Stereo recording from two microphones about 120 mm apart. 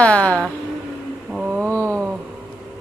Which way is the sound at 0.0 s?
10° left (ahead or behind).